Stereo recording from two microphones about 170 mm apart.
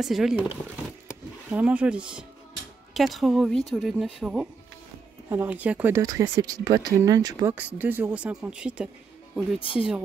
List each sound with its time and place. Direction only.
0.0 s speech: centre (ahead or behind)
1.0 s a sound: 5° right (ahead or behind)
2.9 s speech: centre (ahead or behind); by 7.5 s 20° right (ahead or behind)
7.5 s speech: 10° right (ahead or behind)